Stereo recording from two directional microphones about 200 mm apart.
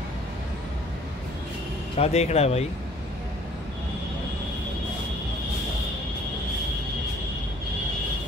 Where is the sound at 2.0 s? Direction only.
30° left (ahead or behind).